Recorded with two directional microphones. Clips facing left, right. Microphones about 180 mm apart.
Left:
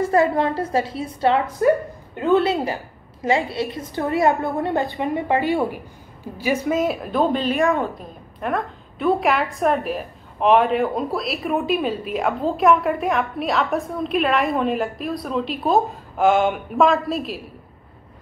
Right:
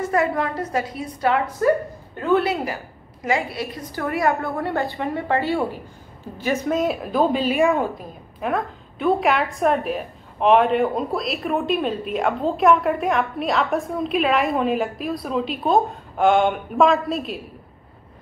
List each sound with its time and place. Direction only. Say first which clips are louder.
0.0 s a woman's voice: left 3 dB; 30° left (ahead or behind); by 17.4 s centre (ahead or behind)